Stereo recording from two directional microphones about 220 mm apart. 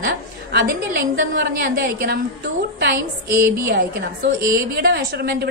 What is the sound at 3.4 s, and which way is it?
A woman's voice, 45° right (ahead or behind).